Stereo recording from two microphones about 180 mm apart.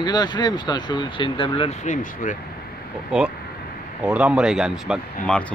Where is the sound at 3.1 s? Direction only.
5° right (ahead or behind).